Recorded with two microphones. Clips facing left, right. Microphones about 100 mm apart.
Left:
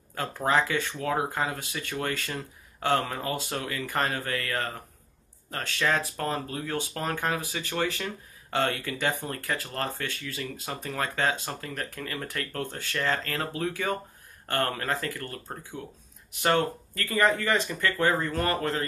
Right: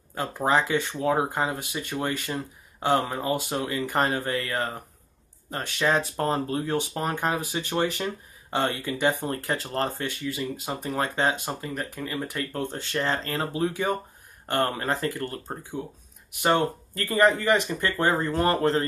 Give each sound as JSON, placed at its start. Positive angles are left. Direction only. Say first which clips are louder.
{"t": 0.1, "sound": "speech", "louder": "right 2 dB", "side_deg": -15}